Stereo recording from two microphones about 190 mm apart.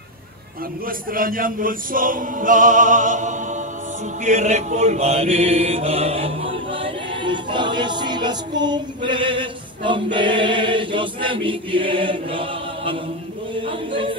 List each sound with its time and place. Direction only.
0.8 s chant: 50° right (ahead or behind); by 6.3 s 30° right (ahead or behind)
6.7 s choir: 25° right (ahead or behind)
10.1 s chant: 25° right (ahead or behind)